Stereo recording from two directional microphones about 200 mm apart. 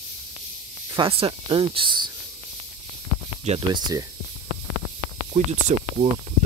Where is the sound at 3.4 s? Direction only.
30° right (ahead or behind).